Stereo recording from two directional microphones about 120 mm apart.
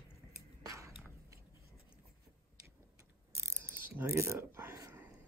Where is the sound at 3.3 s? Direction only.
25° right (ahead or behind).